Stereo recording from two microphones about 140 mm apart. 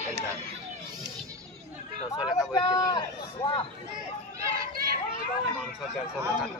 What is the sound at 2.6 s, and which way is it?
Speech, 30° left (ahead or behind).